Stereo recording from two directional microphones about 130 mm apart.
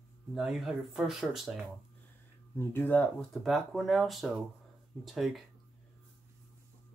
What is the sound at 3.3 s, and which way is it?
Speech, centre (ahead or behind).